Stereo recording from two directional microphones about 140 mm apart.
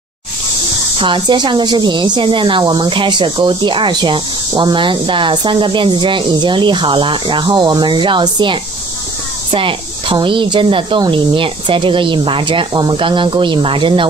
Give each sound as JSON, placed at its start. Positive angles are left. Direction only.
{"t": 0.9, "sound": "a woman's voice", "side_deg": -35}